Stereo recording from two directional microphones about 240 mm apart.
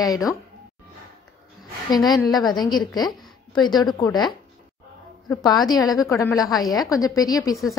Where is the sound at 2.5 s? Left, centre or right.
Centre.